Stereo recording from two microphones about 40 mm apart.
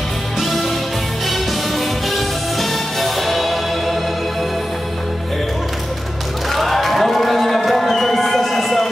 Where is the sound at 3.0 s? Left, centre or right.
Centre.